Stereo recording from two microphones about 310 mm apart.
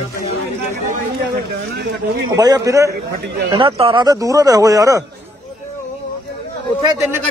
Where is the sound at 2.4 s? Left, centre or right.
Centre.